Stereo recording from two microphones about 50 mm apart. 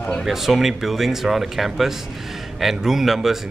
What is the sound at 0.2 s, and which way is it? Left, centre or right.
Speech, centre.